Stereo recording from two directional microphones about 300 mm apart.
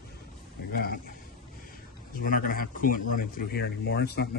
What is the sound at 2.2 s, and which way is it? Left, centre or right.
A man's voice, left.